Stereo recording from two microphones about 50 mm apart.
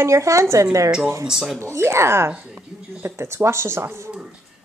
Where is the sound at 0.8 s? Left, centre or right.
Centre.